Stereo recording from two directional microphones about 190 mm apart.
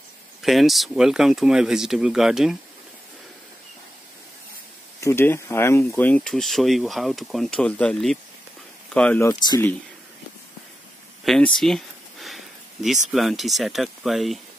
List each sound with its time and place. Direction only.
0.4 s speech: centre (ahead or behind)
5.0 s speech: 10° left (ahead or behind)
9.3 s speech: 20° left (ahead or behind)
11.2 s a sound: centre (ahead or behind)
13.1 s speech: centre (ahead or behind)